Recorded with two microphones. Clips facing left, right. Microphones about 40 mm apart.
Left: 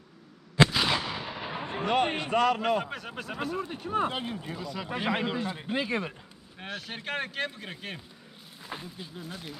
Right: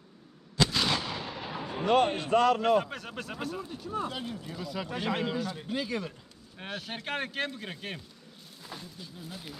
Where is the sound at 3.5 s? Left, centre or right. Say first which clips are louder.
Left 9 dB; left.